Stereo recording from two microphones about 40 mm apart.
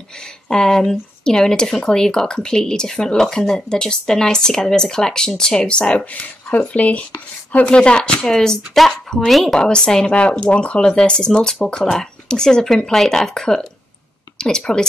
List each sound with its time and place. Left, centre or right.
0.2 s speech: centre
5.7 s speech: left
6.5 s speech: left
7.6 s speech: left
8.3 s speech: centre
9.6 s speech: centre